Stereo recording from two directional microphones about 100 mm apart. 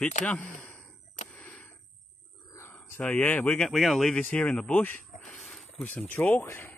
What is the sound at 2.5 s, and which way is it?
Speech, 25° left (ahead or behind).